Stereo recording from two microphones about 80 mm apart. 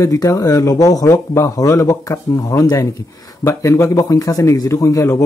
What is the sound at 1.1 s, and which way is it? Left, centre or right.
A man's voice, left.